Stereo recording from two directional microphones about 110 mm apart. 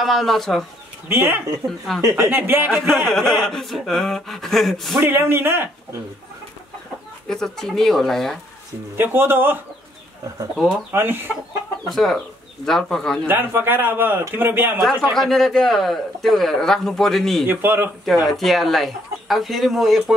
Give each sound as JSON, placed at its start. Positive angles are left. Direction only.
{"t": 0.0, "sound": "a man's voice", "side_deg": 0}
{"t": 1.0, "sound": "speech", "side_deg": -20}
{"t": 3.1, "sound": "a man's voice", "side_deg": 5}
{"t": 5.0, "sound": "speech", "side_deg": -20}
{"t": 7.2, "sound": "a man's voice", "side_deg": 5}
{"t": 8.9, "sound": "speech", "side_deg": -20}
{"t": 10.9, "sound": "speech", "side_deg": -20}
{"t": 11.9, "sound": "a man's voice", "side_deg": 0}
{"t": 13.3, "sound": "a man's voice", "side_deg": -20}
{"t": 14.8, "sound": "a man's voice", "side_deg": 5}
{"t": 17.5, "sound": "speech", "side_deg": -20}
{"t": 18.0, "sound": "a man's voice", "side_deg": 0}